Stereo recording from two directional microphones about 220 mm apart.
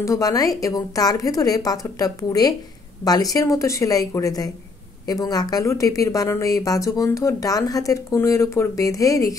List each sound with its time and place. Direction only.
0.0 s speech: 15° left (ahead or behind)